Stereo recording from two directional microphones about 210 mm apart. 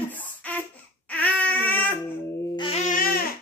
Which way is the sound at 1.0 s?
5° left (ahead or behind).